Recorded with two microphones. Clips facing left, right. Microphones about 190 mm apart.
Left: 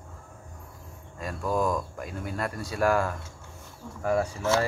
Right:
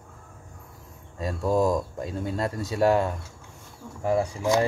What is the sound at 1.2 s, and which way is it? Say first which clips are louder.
Speech: right 4 dB; 25° right (ahead or behind).